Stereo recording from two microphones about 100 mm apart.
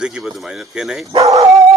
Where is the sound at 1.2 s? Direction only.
35° right (ahead or behind).